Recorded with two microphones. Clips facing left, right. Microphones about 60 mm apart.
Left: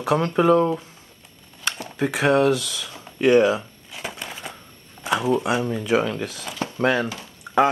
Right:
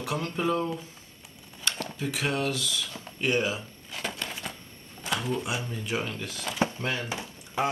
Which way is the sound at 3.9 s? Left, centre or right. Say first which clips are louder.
Left 2 dB; centre.